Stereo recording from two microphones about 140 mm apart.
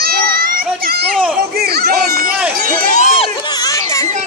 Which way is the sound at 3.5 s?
25° left (ahead or behind).